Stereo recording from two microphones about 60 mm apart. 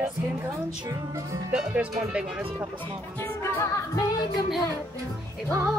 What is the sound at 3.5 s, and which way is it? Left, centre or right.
A capella, left.